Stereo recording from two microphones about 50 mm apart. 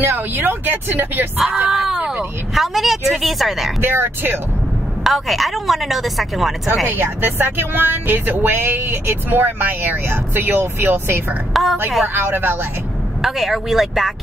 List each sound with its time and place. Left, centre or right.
0.0 s speech: right
1.7 s speech: centre
3.8 s speech: right
5.0 s speech: centre
6.9 s speech: right
11.5 s speech: centre
12.1 s speech: right
13.2 s speech: centre